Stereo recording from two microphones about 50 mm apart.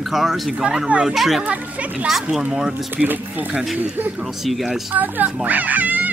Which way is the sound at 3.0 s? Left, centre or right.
Right.